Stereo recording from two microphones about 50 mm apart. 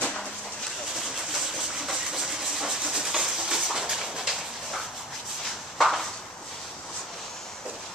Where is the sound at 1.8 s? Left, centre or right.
Centre.